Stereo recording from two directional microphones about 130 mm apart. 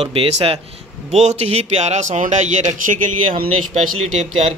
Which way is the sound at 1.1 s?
60° right (ahead or behind).